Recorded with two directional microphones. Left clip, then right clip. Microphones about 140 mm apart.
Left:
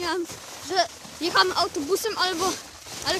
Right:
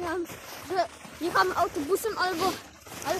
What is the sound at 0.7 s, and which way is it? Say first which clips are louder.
Speech: left 4 dB; 25° left (ahead or behind).